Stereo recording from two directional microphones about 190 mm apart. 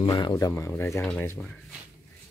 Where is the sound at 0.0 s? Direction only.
25° left (ahead or behind); by 1.6 s 10° left (ahead or behind).